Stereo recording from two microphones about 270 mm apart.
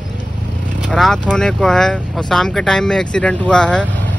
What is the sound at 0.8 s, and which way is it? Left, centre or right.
Speech, centre.